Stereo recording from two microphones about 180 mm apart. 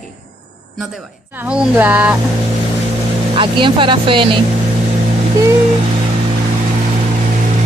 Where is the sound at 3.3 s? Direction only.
30° right (ahead or behind).